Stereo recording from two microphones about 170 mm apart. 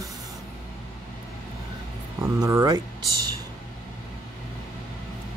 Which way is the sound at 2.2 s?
20° right (ahead or behind).